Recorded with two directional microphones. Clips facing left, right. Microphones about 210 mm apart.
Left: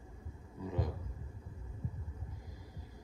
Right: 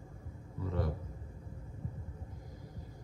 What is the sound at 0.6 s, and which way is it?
Speech, 15° left (ahead or behind).